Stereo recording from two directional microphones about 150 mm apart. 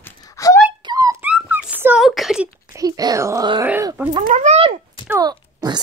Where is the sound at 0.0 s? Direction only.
25° left (ahead or behind).